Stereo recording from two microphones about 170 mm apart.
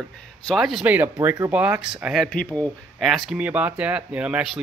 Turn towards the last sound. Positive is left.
turn(degrees=-5)  # may be behind; listen again after turning